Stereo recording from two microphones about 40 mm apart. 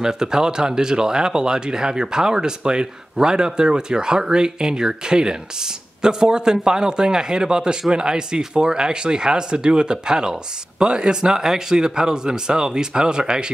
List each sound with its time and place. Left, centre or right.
0.0 s speech: centre